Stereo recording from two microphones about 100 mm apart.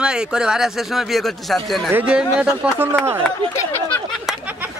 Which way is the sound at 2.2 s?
5° right (ahead or behind).